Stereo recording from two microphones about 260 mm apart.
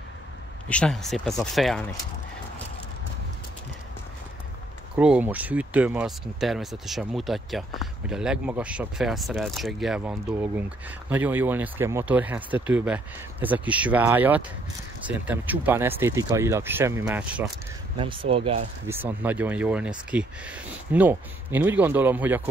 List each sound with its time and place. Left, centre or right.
0.7 s speech: centre
4.9 s speech: centre
17.9 s speech: centre
18.9 s speech: centre